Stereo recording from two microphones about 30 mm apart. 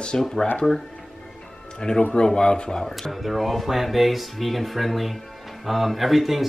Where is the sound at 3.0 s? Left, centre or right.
Centre.